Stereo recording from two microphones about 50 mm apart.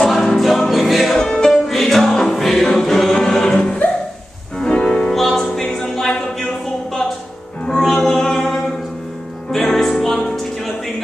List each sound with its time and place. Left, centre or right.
0.0 s music: centre
1.2 s music: centre